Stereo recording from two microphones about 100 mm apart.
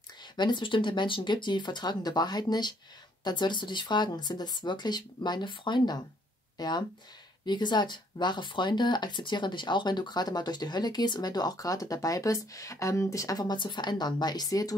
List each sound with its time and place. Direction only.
0.4 s speech: 50° left (ahead or behind)
6.6 s speech: 40° left (ahead or behind)